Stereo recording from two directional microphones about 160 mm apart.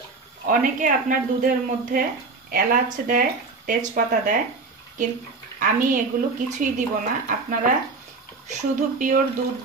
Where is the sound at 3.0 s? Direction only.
60° right (ahead or behind).